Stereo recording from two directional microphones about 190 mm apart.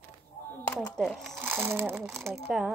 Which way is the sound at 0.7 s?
5° left (ahead or behind).